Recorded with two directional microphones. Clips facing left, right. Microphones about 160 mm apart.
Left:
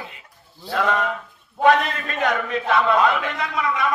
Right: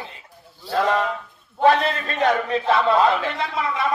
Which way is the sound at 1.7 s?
30° right (ahead or behind).